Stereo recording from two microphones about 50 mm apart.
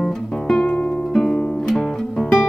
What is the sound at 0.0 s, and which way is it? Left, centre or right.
Music, centre.